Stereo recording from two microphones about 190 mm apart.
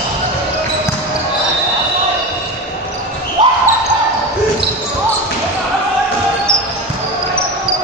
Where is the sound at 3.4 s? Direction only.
25° right (ahead or behind).